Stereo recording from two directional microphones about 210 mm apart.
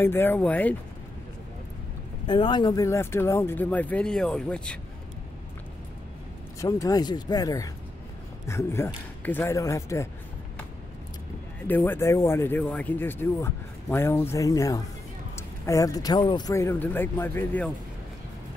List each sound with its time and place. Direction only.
0.0 s speech: 10° left (ahead or behind)
2.2 s speech: 20° left (ahead or behind); by 4.7 s 5° left (ahead or behind)
6.6 s speech: 15° left (ahead or behind)
11.6 s speech: 10° left (ahead or behind)